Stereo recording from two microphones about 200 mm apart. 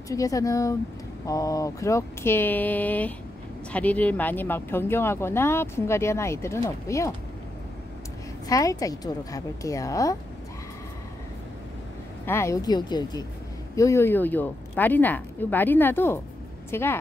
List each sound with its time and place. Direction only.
0.1 s speech: 15° left (ahead or behind)
8.5 s speech: 15° left (ahead or behind)
12.3 s speech: 15° left (ahead or behind)